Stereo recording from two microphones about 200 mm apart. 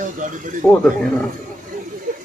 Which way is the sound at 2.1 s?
40° right (ahead or behind).